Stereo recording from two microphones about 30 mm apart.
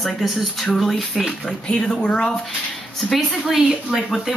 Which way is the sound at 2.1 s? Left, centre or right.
Left.